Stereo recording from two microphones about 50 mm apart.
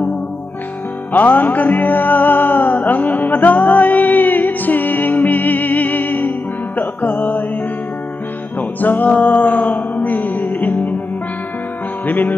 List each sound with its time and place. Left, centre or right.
1.1 s music: left
8.5 s music: left
12.1 s music: left